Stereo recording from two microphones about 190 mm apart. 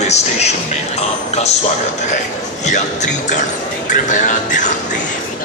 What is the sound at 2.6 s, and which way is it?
Speech, 40° left (ahead or behind).